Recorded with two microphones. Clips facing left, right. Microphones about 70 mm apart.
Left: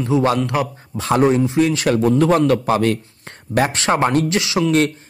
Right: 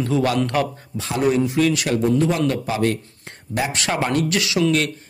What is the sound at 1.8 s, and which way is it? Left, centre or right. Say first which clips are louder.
Speech: left 4 dB; left.